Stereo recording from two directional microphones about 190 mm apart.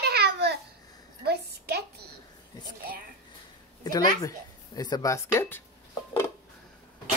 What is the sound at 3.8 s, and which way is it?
Speech, 20° left (ahead or behind).